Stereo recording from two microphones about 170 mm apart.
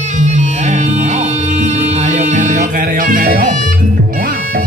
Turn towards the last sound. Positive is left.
turn(degrees=-55)  # may be behind; listen again after turning